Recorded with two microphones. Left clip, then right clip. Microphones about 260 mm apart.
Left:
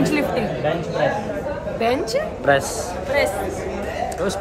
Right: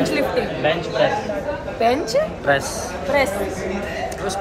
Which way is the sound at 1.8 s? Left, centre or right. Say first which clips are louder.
Right 3 dB; centre.